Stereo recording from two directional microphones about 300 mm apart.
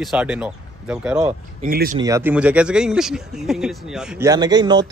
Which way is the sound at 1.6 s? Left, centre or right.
Right.